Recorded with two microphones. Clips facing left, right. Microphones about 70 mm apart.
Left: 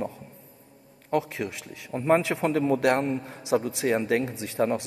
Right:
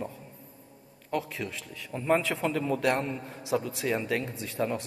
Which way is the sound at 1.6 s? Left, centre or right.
Left.